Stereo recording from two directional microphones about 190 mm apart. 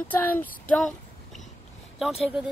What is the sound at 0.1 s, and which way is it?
Speech, 10° left (ahead or behind).